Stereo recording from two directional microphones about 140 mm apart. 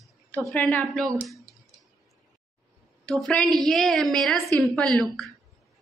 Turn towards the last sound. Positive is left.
turn(degrees=0)  # may be behind; listen again after turning